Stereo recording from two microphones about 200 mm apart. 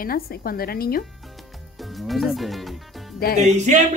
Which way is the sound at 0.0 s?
45° left (ahead or behind).